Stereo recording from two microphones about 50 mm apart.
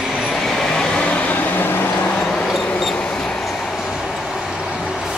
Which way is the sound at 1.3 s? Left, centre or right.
Left.